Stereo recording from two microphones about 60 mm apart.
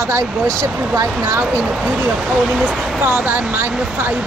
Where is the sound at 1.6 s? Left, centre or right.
Centre.